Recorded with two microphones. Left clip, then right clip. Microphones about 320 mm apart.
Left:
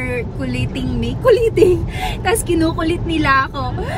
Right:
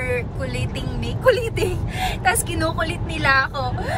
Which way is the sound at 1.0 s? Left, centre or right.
Centre.